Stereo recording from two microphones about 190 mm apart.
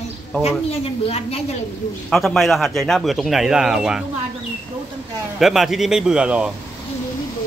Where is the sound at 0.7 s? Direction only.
30° left (ahead or behind).